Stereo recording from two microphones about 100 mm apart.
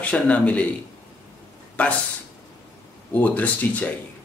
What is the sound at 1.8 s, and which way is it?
Speech, 15° left (ahead or behind).